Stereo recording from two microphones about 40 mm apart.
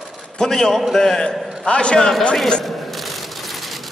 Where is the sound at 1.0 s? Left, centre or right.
Centre.